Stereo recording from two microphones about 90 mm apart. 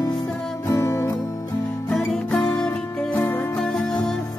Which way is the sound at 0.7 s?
35° left (ahead or behind).